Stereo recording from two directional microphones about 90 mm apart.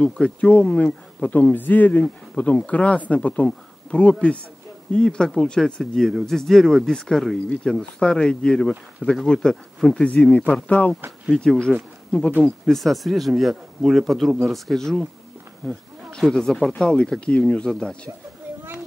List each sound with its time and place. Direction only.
0.0 s speech: 15° left (ahead or behind)